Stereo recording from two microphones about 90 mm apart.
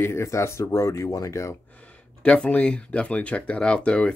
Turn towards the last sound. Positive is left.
turn(degrees=10)  # may be behind; listen again after turning